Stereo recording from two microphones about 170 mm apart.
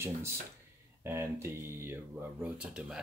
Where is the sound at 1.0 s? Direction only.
15° right (ahead or behind).